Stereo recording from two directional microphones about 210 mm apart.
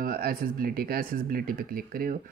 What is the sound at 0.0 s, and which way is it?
Speech, 45° right (ahead or behind).